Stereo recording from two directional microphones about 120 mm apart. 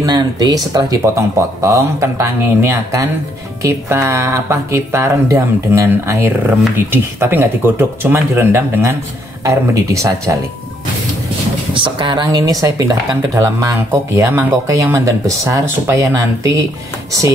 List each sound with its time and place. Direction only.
0.0 s speech: 30° right (ahead or behind)
11.7 s speech: 40° right (ahead or behind)